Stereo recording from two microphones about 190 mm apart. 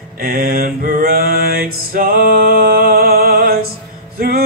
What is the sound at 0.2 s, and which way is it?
Mantra, 55° right (ahead or behind).